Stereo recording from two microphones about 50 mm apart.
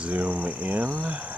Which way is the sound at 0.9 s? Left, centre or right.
Right.